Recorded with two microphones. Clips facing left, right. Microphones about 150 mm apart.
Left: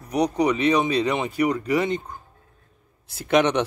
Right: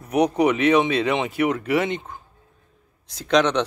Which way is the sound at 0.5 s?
35° left (ahead or behind).